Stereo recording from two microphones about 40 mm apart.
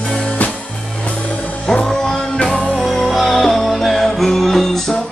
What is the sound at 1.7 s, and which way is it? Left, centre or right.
Music, centre.